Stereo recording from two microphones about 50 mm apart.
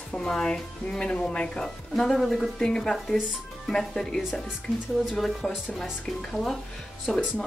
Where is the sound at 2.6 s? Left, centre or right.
Centre.